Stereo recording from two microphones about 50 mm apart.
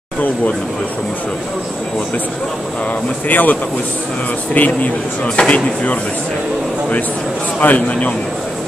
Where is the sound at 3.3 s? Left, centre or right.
Left.